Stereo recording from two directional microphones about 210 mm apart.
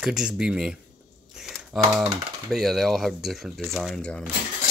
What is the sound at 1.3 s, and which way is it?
Typing, centre (ahead or behind).